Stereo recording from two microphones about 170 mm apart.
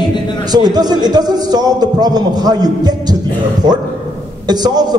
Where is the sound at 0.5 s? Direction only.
25° right (ahead or behind).